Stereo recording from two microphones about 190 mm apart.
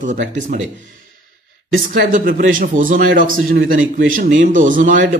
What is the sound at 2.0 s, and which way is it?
A man's voice, 45° right (ahead or behind).